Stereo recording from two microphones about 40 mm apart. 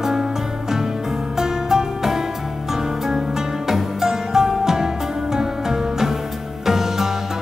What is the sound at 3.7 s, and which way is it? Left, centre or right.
Music, centre.